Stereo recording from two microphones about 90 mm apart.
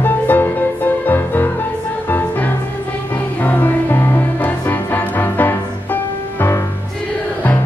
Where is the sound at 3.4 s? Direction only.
20° left (ahead or behind).